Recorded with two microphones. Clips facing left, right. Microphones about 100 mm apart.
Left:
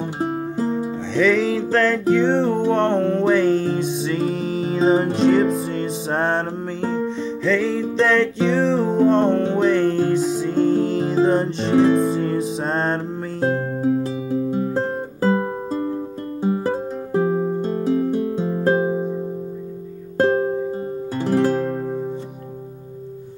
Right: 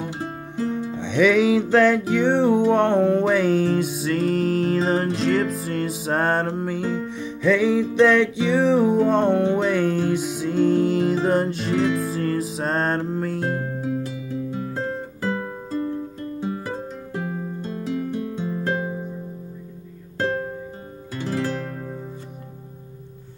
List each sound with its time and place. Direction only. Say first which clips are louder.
0.0 s music: left 7 dB; 30° left (ahead or behind)
1.1 s music: right 1 dB; 5° right (ahead or behind)
11.7 s music: left 7 dB; 35° left (ahead or behind)
12.0 s music: left 4 dB; centre (ahead or behind)
13.6 s music: left 6 dB; 35° left (ahead or behind)
20.2 s music: left 7 dB; 35° left (ahead or behind)